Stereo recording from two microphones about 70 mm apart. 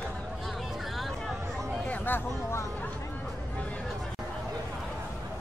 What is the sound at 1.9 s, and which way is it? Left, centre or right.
Chatter, left.